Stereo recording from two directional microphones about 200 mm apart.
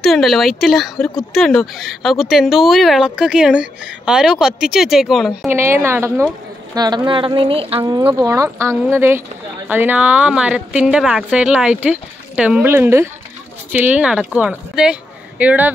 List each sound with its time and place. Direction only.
0.0 s speech: centre (ahead or behind)
5.5 s speech: 10° right (ahead or behind)